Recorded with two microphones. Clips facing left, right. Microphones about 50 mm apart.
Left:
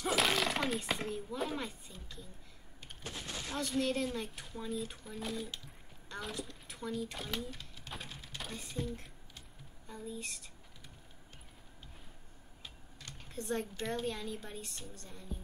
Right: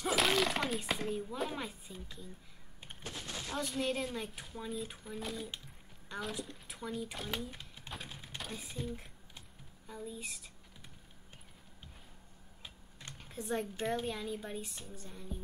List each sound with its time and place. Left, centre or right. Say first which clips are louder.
0.0 s speech: right 1 dB; centre
3.5 s speech: left 2 dB; centre
7.5 s typing: even; centre
8.1 s a sound: right 1 dB; centre
8.4 s speech: left 1 dB; centre
13.2 s a sound: even; centre
13.7 s speech: right 1 dB; centre